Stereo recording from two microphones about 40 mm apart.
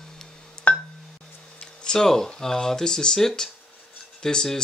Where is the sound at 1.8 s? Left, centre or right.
Centre.